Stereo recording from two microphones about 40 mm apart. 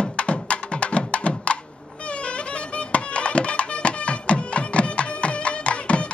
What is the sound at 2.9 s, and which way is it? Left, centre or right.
Music, left.